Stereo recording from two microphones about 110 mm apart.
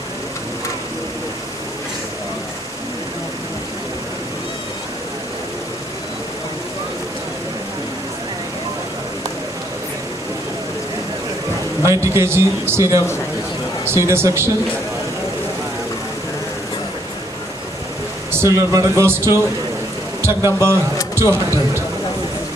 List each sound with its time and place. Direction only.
11.8 s a man's voice: 25° right (ahead or behind)
18.3 s a man's voice: 25° right (ahead or behind)
21.1 s a sound: 25° right (ahead or behind)